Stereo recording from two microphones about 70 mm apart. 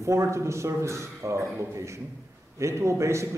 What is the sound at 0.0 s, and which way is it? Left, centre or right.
A man's voice, right.